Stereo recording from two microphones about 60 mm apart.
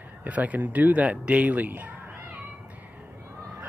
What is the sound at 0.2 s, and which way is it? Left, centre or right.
Speech, right.